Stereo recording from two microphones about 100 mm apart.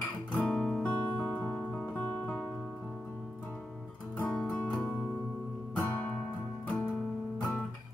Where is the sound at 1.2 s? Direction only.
15° left (ahead or behind).